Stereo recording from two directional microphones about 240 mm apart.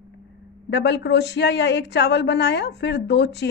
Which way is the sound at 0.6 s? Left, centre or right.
Left.